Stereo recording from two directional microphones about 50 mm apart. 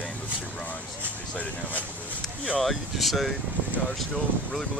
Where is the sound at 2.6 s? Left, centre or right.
Centre.